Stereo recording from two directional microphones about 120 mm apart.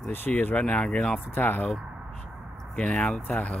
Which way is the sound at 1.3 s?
15° left (ahead or behind).